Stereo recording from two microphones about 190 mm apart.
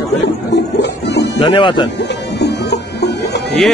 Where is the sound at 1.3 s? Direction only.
25° left (ahead or behind).